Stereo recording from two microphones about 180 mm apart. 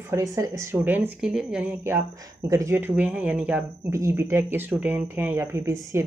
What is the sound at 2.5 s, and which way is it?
Speech, 15° right (ahead or behind).